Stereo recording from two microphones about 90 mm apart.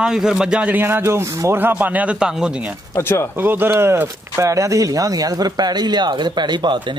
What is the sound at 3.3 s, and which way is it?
Speech, 25° right (ahead or behind).